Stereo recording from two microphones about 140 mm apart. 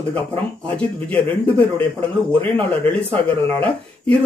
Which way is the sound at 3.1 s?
40° right (ahead or behind).